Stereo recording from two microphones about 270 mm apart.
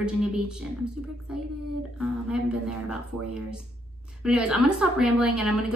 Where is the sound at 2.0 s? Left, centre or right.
Centre.